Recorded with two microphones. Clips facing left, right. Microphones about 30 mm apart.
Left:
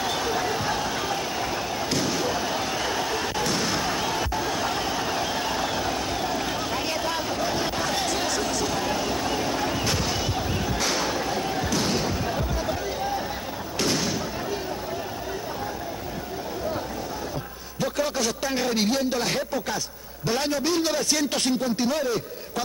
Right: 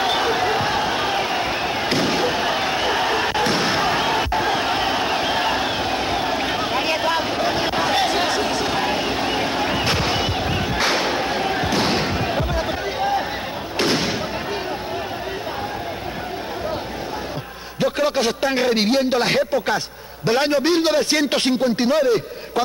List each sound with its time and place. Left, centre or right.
0.0 s a sound: right
13.7 s thump: right
17.7 s a man's voice: right